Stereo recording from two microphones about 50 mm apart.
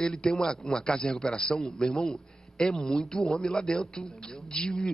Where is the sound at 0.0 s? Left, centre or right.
Centre.